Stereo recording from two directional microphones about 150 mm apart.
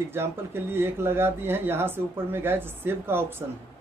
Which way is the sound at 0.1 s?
15° right (ahead or behind).